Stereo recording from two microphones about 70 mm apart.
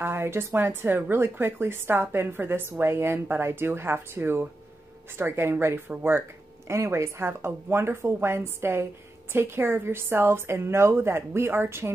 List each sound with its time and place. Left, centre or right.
0.0 s a woman's voice: right